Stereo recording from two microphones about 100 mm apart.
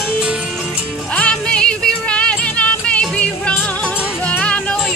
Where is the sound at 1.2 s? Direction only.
10° left (ahead or behind).